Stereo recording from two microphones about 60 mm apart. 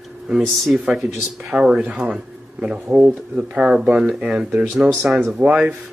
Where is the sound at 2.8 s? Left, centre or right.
Centre.